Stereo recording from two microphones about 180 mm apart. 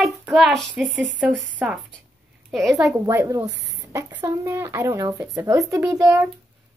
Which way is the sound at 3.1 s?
15° right (ahead or behind).